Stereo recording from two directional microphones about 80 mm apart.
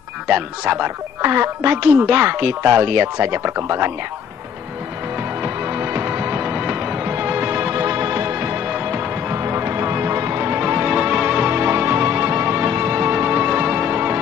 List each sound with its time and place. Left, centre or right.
0.3 s speech: right
5.4 s music: right
8.6 s music: centre
9.3 s music: right